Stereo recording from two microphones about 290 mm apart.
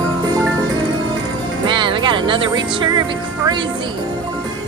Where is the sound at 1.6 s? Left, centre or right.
Centre.